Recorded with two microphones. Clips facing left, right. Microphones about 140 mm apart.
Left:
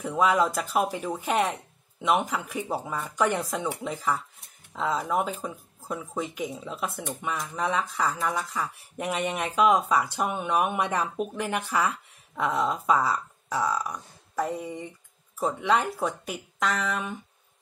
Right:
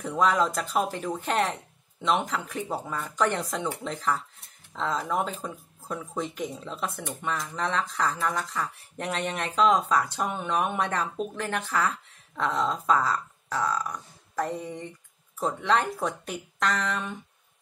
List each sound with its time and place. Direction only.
0.0 s speech: 10° left (ahead or behind)